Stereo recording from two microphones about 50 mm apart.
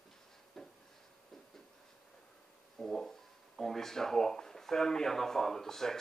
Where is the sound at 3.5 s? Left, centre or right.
Centre.